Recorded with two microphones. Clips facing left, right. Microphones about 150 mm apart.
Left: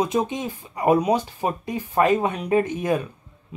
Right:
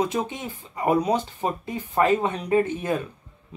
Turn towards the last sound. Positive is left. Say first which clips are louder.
# left 2 dB
turn(degrees=15)  # may be behind; listen again after turning